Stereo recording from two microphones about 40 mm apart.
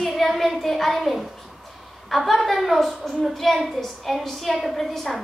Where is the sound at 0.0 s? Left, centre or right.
Centre.